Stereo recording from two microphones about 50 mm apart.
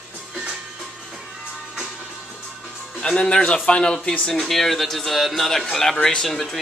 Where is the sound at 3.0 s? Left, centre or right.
Centre.